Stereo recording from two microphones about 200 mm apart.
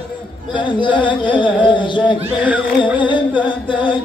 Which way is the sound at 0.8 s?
25° left (ahead or behind).